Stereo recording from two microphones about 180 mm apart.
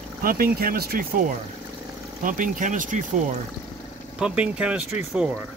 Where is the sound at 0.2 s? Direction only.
55° right (ahead or behind).